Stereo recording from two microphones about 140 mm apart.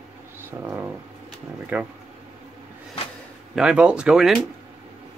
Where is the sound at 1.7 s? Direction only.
15° right (ahead or behind).